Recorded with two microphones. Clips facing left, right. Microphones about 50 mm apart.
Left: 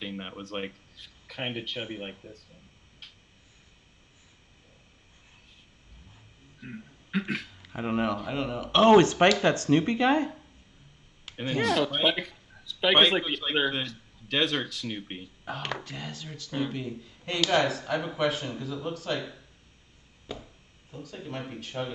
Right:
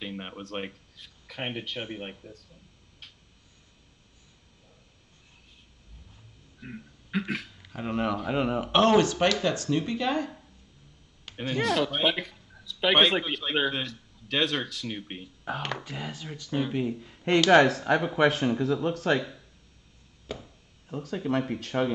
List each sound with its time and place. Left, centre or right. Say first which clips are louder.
0.0 s speech: even; centre
6.6 s speech: even; centre
7.7 s speech: left 1 dB; centre
8.3 s a man's voice: right 4 dB; centre
8.9 s speech: left 3 dB; left
11.2 s speech: even; centre
16.7 s speech: right 6 dB; right
17.5 s speech: right 6 dB; right
20.9 s speech: right 9 dB; right
21.2 s speech: right 9 dB; right